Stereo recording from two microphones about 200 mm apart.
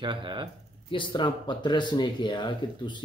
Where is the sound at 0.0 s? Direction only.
25° right (ahead or behind).